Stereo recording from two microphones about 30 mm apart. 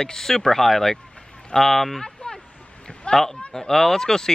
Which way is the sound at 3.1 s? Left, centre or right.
Centre.